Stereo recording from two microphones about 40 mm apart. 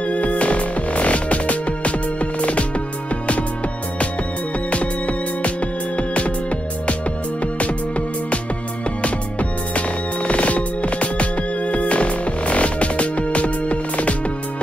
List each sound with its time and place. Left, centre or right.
0.0 s music: left
4.6 s music: left
7.5 s music: left